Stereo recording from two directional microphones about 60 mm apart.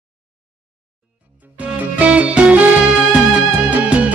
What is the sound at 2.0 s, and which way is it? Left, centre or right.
Music, right.